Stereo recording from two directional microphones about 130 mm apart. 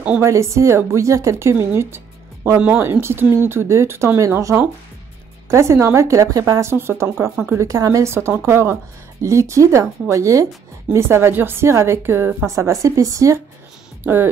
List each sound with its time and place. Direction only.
0.2 s speech: 20° right (ahead or behind)